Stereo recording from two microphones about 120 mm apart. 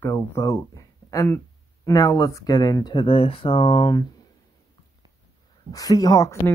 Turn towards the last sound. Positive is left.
turn(degrees=30)  # may be behind; listen again after turning